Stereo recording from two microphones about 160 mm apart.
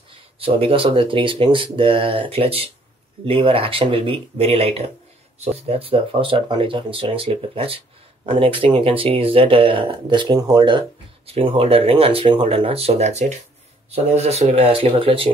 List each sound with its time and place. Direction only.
0.4 s speech: 35° right (ahead or behind)